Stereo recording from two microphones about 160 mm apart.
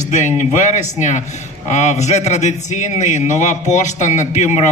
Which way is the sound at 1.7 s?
45° left (ahead or behind).